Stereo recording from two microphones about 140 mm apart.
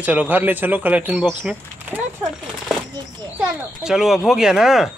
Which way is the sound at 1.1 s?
Centre (ahead or behind).